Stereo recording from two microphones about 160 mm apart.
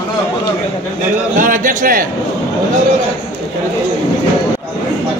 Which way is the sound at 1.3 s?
55° right (ahead or behind).